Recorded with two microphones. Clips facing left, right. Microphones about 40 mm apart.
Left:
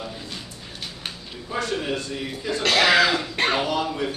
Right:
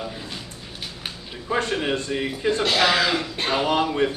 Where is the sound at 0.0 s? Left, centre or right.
Centre.